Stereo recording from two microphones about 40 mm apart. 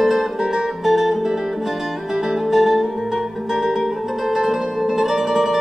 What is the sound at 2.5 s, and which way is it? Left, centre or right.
Music, centre.